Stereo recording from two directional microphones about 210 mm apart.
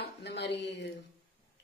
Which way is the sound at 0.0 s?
55° left (ahead or behind).